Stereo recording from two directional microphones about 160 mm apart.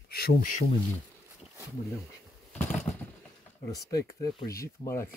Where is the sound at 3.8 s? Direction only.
20° left (ahead or behind).